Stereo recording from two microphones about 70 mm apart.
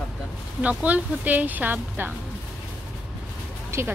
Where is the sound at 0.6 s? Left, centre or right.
Centre.